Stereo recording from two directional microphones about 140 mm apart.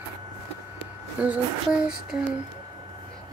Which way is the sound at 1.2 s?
10° right (ahead or behind).